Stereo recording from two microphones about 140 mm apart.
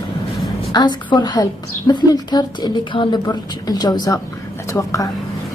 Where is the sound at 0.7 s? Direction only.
30° left (ahead or behind).